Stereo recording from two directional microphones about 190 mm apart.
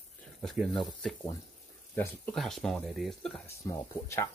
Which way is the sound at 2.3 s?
Centre (ahead or behind).